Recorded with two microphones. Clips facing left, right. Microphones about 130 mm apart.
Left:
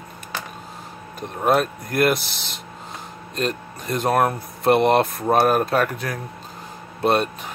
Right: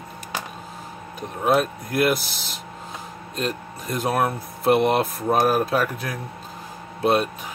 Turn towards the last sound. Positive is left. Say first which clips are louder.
# left 1 dB
turn(degrees=0)  # may be behind; listen again after turning